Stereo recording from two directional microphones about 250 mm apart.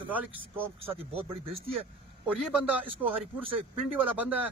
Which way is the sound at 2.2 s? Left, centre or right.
Centre.